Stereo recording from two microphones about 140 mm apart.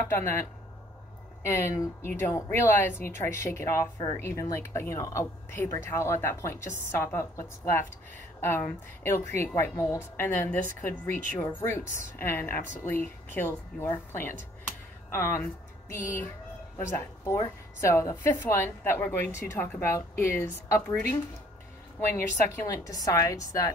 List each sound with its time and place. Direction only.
0.1 s a woman's voice: 15° left (ahead or behind)
16.7 s a woman's voice: 20° left (ahead or behind)